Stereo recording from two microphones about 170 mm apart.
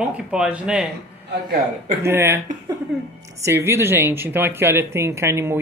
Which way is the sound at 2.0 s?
15° right (ahead or behind).